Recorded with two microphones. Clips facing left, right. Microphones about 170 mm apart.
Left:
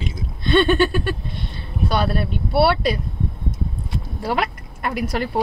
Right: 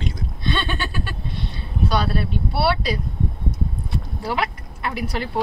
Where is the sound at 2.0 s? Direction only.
50° left (ahead or behind).